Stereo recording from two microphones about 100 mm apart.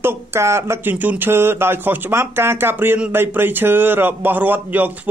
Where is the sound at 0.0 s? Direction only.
25° right (ahead or behind).